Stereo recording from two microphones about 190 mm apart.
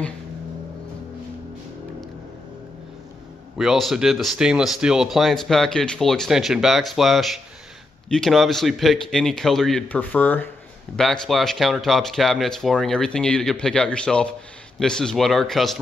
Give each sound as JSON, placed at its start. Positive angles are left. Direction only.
{"t": 3.5, "sound": "speech", "side_deg": 0}